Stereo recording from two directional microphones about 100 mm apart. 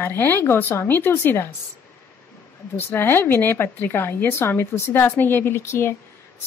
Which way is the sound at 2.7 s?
20° left (ahead or behind).